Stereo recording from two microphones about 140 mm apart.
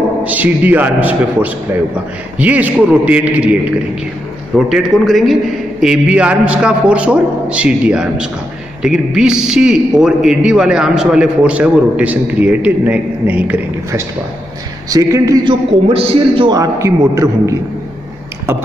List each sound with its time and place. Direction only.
0.2 s a man's voice: 10° right (ahead or behind)
4.6 s a man's voice: 5° right (ahead or behind)
14.9 s a man's voice: 25° right (ahead or behind)
15.4 s a man's voice: 45° right (ahead or behind)
16.5 s a man's voice: 20° right (ahead or behind)